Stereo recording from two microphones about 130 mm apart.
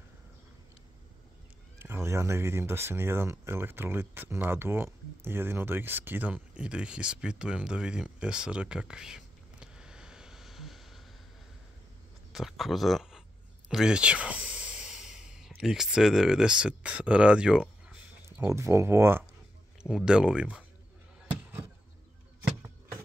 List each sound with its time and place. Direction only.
1.8 s speech: 20° right (ahead or behind); by 11.0 s centre (ahead or behind)
12.3 s speech: centre (ahead or behind)
18.4 s speech: 20° right (ahead or behind)
19.8 s speech: 5° right (ahead or behind)